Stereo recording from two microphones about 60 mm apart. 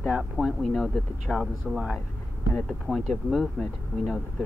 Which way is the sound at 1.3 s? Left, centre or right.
Centre.